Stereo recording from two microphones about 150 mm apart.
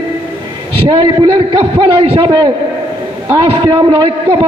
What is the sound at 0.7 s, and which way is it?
A man's voice, 35° right (ahead or behind).